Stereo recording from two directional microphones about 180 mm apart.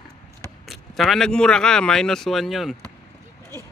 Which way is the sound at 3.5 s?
20° right (ahead or behind).